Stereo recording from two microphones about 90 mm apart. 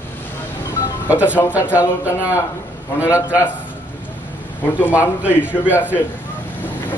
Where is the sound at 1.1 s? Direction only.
15° right (ahead or behind).